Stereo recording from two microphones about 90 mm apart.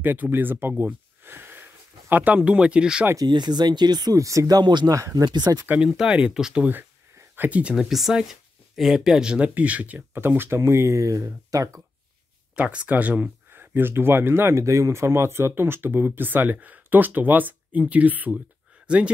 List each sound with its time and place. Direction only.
0.0 s speech: 20° right (ahead or behind)
3.3 s speech: 55° right (ahead or behind)
5.9 s speech: 10° right (ahead or behind); by 11.8 s 35° right (ahead or behind)
12.5 s speech: 15° right (ahead or behind)